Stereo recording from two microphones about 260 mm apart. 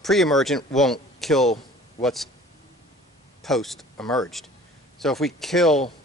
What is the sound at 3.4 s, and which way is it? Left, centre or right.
Speech, centre.